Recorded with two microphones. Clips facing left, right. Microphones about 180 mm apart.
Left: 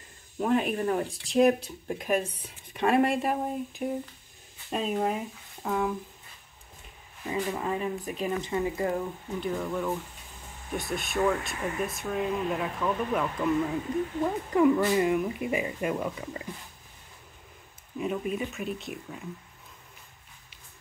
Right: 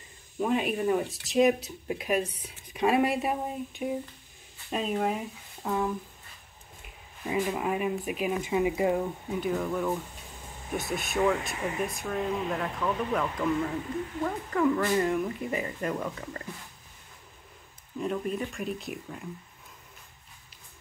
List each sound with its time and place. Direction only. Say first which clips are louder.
0.4 s speech: left 1 dB; 5° right (ahead or behind)
7.3 s speech: right 2 dB; 10° right (ahead or behind)
11.1 s speech: even; 15° right (ahead or behind)
11.9 s speech: left 1 dB; 5° left (ahead or behind)
17.9 s speech: even; 5° left (ahead or behind)